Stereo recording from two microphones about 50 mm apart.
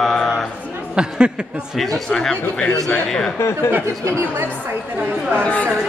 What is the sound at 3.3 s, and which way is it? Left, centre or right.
Speech, left.